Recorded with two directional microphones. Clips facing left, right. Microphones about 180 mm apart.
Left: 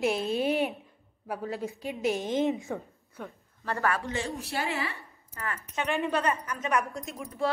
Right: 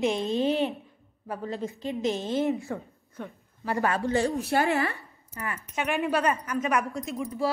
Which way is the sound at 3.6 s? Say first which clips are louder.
Right 2 dB; 20° right (ahead or behind).